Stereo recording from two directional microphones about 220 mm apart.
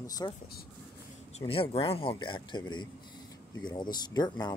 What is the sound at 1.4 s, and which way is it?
Speech, 25° left (ahead or behind).